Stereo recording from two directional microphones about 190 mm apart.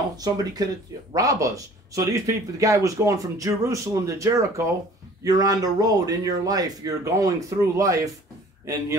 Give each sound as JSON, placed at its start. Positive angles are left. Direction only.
{"t": 0.2, "sound": "a man's voice", "side_deg": -20}